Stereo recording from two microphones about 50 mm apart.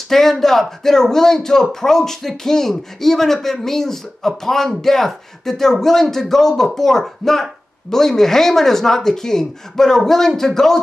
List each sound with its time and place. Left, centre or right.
0.1 s speech: centre